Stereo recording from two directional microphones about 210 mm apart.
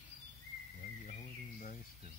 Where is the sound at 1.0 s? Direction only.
40° left (ahead or behind).